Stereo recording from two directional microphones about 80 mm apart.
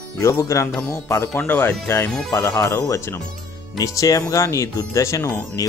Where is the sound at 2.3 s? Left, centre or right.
Left.